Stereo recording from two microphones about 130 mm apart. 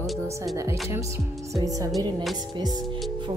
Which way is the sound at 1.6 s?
25° right (ahead or behind).